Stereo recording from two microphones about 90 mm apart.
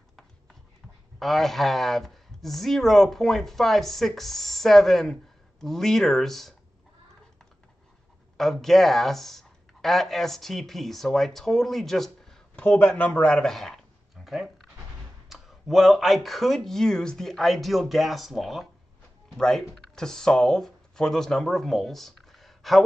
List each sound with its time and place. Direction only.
1.2 s speech: centre (ahead or behind)
8.4 s speech: 5° left (ahead or behind)
12.5 s speech: 15° left (ahead or behind)